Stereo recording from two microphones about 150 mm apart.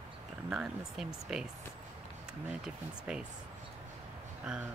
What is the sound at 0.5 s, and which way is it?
Speech, 5° right (ahead or behind).